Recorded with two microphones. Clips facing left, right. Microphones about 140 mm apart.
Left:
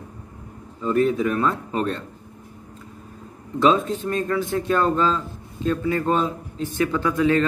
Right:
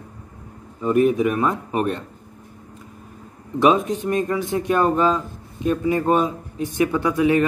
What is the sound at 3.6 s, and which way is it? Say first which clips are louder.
Speech: right 2 dB; 15° right (ahead or behind).